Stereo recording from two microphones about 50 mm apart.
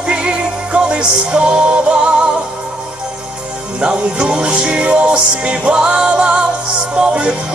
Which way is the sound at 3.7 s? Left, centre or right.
Right.